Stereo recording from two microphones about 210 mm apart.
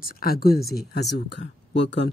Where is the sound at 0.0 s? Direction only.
45° left (ahead or behind).